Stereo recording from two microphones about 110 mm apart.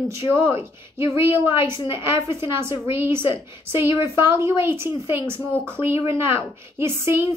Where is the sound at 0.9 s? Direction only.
25° right (ahead or behind).